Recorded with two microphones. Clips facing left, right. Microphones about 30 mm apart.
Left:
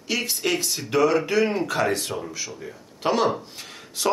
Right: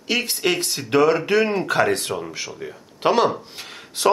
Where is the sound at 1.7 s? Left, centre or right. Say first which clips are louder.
Right 4 dB; right.